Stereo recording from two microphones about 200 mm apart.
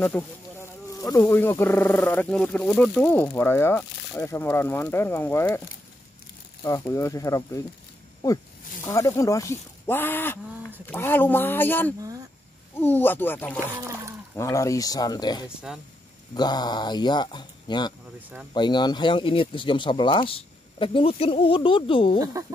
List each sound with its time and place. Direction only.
0.0 s speech: 5° left (ahead or behind)
6.6 s speech: 15° left (ahead or behind)
8.8 s speech: 15° left (ahead or behind)
13.7 s speech: 15° right (ahead or behind)
14.3 s speech: 15° left (ahead or behind)
15.7 s speech: 5° right (ahead or behind)
16.3 s speech: 20° left (ahead or behind)